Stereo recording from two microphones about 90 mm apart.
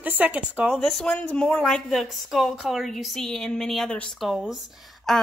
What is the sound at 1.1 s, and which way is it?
A woman's voice, 15° left (ahead or behind).